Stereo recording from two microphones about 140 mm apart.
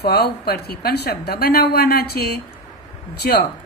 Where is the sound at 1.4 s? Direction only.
90° left.